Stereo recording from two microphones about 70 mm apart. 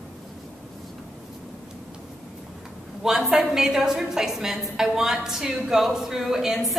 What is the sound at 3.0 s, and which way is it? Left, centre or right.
A woman's voice, centre.